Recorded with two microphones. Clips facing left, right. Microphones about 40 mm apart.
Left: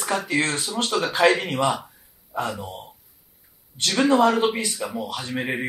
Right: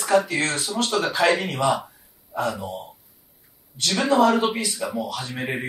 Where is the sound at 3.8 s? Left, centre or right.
Centre.